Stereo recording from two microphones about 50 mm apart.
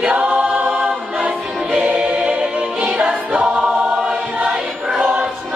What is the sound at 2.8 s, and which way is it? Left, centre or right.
Music, right.